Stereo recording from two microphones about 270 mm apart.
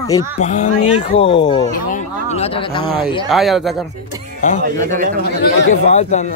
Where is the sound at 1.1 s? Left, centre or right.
Centre.